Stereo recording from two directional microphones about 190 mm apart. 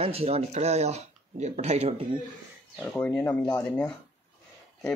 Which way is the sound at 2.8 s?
5° left (ahead or behind).